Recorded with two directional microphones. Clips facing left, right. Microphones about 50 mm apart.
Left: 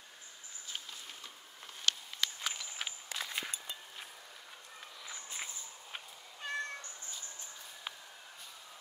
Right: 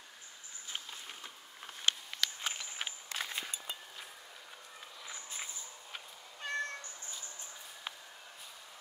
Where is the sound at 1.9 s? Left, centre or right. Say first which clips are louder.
Right 1 dB; right.